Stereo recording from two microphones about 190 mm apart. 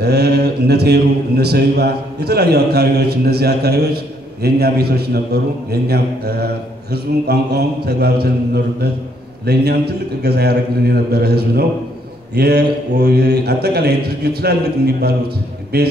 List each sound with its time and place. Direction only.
0.0 s speech: 60° right (ahead or behind)
9.5 s speech: 60° right (ahead or behind)